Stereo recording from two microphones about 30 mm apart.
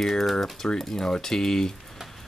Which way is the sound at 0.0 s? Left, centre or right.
Centre.